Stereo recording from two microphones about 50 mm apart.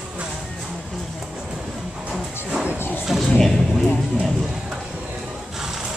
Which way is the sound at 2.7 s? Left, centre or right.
Left.